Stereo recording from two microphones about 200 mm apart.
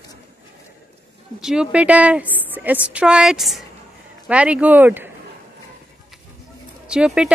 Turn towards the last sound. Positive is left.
turn(degrees=-5)  # may be behind; listen again after turning